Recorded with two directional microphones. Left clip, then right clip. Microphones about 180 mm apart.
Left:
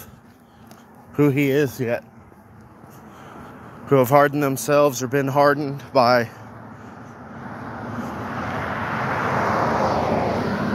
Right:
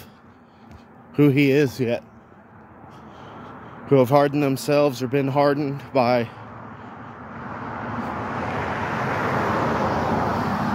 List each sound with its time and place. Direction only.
1.1 s speech: 35° right (ahead or behind)
3.8 s speech: 20° right (ahead or behind)
5.9 s speech: 10° right (ahead or behind)
7.4 s vehicle: 10° left (ahead or behind); by 10.7 s 25° right (ahead or behind)